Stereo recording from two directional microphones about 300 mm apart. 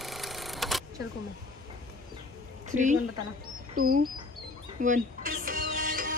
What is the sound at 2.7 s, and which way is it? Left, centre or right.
Speech, right.